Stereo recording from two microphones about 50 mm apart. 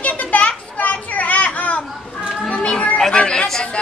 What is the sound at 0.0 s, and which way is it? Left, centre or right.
Children playing, left.